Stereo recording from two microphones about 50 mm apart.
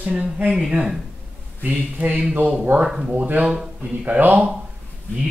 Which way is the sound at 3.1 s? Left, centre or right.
Right.